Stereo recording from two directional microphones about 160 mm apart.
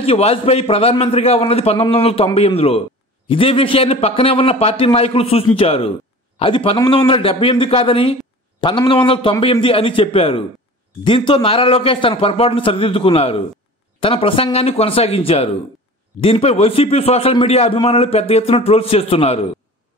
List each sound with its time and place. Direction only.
0.0 s a man's voice: 40° left (ahead or behind)